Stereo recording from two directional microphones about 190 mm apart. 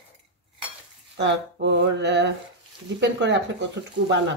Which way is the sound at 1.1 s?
70° right (ahead or behind).